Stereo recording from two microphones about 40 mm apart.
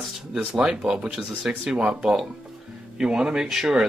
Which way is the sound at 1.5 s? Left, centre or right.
Centre.